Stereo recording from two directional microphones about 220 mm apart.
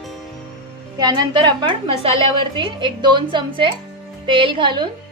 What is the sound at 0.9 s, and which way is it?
A woman's voice, 20° right (ahead or behind).